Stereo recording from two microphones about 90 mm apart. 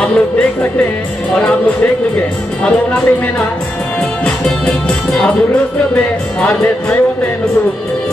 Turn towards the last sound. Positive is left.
turn(degrees=20)  # may be behind; listen again after turning